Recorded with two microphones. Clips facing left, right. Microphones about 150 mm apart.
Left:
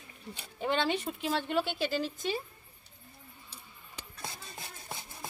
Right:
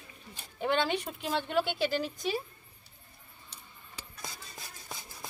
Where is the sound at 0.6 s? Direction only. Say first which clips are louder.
Right 1 dB; centre (ahead or behind).